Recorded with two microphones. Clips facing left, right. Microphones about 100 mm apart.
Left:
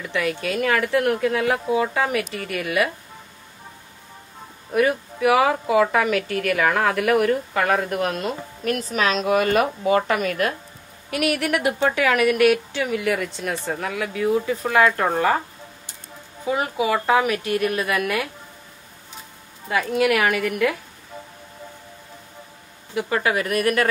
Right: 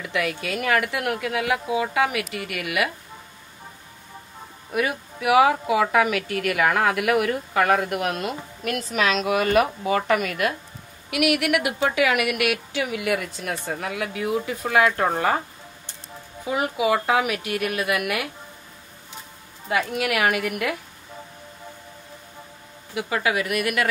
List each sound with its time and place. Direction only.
0.1 s a woman's voice: 30° left (ahead or behind)
4.7 s a woman's voice: 35° left (ahead or behind)
16.4 s a woman's voice: 35° left (ahead or behind)
20.0 s a woman's voice: 35° left (ahead or behind)
22.9 s a woman's voice: 40° left (ahead or behind)